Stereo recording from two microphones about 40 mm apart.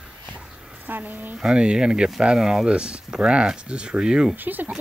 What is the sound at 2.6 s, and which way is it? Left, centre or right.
Speech, right.